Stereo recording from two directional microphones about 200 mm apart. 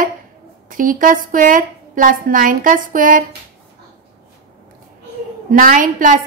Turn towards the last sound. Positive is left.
turn(degrees=-40)  # may be behind; listen again after turning